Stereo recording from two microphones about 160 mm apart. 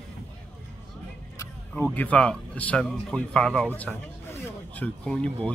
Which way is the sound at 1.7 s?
10° left (ahead or behind).